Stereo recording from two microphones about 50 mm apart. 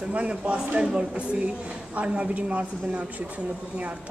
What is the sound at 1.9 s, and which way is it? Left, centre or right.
Speech, right.